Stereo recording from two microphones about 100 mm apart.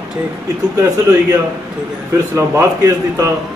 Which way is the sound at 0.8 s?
30° right (ahead or behind).